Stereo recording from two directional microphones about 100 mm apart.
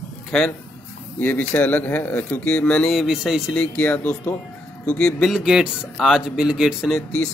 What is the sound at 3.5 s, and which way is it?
Speech, 10° left (ahead or behind).